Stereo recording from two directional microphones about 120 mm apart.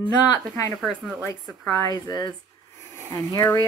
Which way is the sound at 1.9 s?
35° left (ahead or behind).